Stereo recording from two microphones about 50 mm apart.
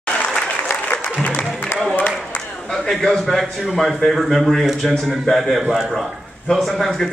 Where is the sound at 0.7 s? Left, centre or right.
Left.